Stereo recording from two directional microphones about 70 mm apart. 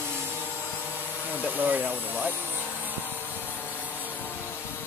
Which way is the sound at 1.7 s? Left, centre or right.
Right.